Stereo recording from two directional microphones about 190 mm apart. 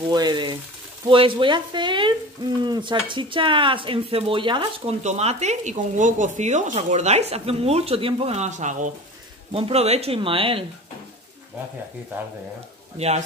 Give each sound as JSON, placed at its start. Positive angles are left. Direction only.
{"t": 0.1, "sound": "speech", "side_deg": -20}
{"t": 13.0, "sound": "speech", "side_deg": -35}